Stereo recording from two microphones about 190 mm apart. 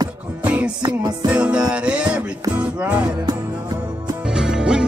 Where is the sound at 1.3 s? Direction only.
5° right (ahead or behind).